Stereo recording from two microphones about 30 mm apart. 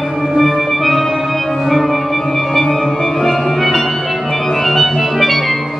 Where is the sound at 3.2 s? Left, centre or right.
Centre.